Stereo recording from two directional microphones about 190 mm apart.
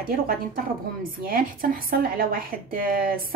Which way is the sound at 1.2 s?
50° right (ahead or behind).